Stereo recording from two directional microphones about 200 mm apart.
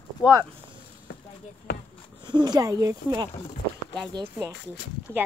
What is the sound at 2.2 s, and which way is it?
Speech, 20° right (ahead or behind).